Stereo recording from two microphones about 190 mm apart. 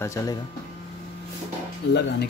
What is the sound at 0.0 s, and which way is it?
Speech, 15° left (ahead or behind).